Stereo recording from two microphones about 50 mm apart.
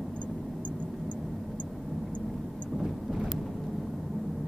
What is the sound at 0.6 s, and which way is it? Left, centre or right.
Vehicle, left.